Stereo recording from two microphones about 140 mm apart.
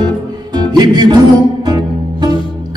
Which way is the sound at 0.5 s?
30° right (ahead or behind).